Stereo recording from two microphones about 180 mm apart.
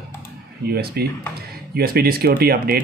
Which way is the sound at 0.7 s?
60° right (ahead or behind).